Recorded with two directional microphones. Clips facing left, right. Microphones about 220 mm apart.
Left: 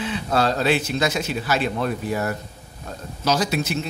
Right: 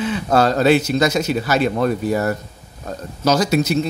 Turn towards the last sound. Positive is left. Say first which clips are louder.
# right 6 dB
turn(degrees=-40)  # may be behind; listen again after turning